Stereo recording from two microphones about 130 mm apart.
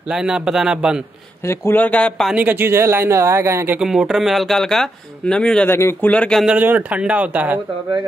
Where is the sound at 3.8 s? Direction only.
5° right (ahead or behind).